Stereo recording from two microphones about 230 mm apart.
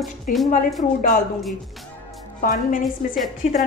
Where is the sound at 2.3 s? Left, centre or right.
Left.